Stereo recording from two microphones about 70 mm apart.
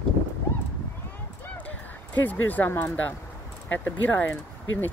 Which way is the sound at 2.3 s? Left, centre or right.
Left.